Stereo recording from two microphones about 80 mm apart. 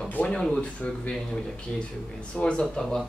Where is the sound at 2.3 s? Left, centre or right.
Centre.